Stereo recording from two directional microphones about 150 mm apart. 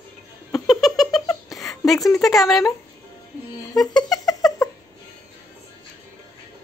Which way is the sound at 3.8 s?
Centre (ahead or behind).